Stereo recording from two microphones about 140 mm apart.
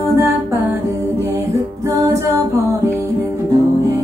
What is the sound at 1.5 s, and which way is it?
Music, 25° right (ahead or behind).